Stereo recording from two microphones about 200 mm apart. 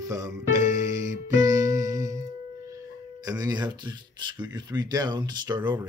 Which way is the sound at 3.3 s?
20° right (ahead or behind).